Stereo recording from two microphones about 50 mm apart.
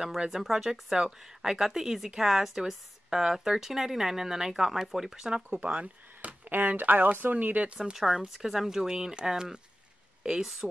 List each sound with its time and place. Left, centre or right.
0.3 s speech: centre
5.7 s speech: right
6.5 s speech: right
7.8 s speech: centre